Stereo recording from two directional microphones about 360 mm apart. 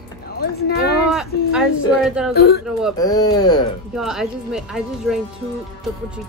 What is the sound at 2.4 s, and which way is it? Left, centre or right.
Speech, left.